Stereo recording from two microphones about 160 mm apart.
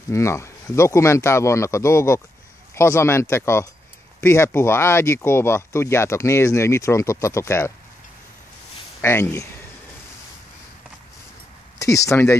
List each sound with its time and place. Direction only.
0.1 s speech: 20° left (ahead or behind)
9.0 s speech: 15° left (ahead or behind)
11.8 s speech: 20° left (ahead or behind)